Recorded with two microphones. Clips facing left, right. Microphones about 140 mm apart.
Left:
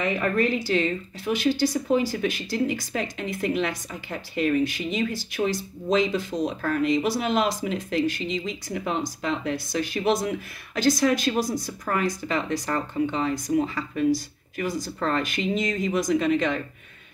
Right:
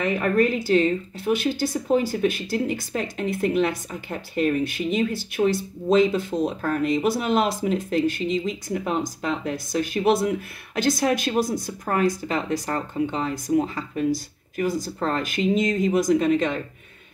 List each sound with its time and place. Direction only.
0.0 s a woman's voice: 45° right (ahead or behind)